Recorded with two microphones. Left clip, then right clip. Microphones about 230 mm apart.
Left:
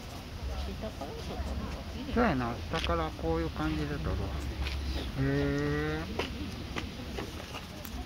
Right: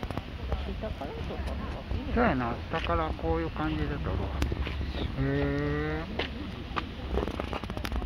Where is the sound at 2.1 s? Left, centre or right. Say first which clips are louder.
Right 2 dB; centre.